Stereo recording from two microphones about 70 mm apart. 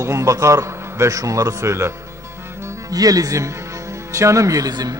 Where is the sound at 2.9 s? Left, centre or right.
Right.